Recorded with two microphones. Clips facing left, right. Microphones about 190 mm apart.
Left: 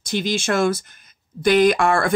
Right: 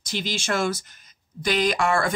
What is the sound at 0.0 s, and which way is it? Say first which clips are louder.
Speech: left 7 dB; 50° left (ahead or behind).